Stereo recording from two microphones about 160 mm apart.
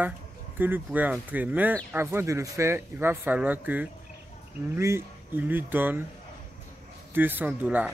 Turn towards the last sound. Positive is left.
turn(degrees=-10)  # may be behind; listen again after turning